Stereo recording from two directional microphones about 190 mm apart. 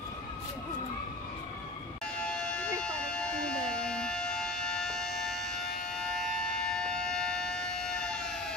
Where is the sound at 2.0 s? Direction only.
5° left (ahead or behind).